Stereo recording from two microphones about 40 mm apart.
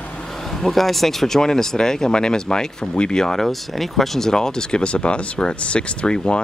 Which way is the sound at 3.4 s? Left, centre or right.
Centre.